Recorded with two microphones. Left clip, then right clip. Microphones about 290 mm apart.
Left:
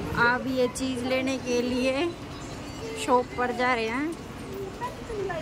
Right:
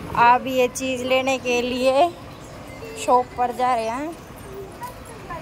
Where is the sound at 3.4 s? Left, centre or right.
Centre.